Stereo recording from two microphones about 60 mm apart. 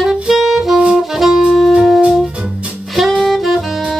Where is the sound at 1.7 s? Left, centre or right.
Centre.